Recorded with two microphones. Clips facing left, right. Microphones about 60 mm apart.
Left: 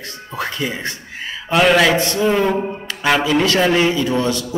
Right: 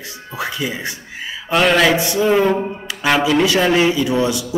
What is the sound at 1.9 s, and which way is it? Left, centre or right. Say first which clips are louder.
Speech: even; centre.